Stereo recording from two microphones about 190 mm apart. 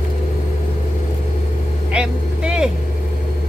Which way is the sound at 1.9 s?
5° right (ahead or behind).